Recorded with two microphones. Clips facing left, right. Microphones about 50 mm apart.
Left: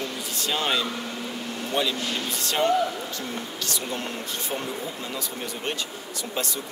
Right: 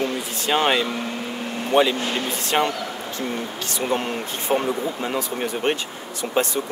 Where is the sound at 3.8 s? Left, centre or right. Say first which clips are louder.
Right 7 dB; right.